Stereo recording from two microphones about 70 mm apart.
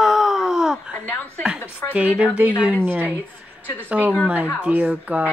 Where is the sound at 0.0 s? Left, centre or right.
Centre.